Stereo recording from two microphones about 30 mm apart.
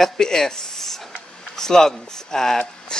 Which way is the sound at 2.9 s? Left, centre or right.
Left.